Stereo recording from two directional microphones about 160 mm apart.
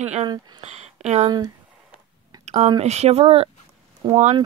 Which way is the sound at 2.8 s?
40° right (ahead or behind).